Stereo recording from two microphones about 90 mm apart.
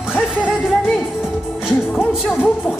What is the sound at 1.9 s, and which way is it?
Music, 10° right (ahead or behind).